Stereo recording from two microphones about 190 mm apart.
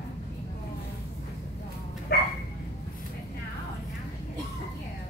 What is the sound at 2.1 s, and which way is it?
Bow-wow, 50° left (ahead or behind).